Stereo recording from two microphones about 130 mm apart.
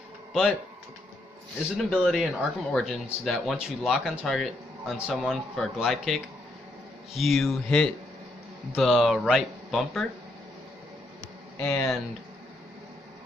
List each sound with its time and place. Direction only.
0.3 s speech: centre (ahead or behind)
1.9 s speech: centre (ahead or behind)
11.6 s speech: 20° left (ahead or behind)